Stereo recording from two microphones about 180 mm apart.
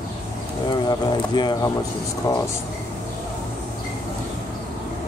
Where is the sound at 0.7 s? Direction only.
25° left (ahead or behind).